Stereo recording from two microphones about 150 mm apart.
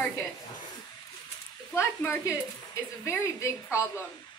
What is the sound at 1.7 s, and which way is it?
A woman's voice, 15° left (ahead or behind).